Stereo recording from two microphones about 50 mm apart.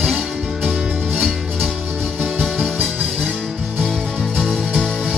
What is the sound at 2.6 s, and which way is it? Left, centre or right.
Music, centre.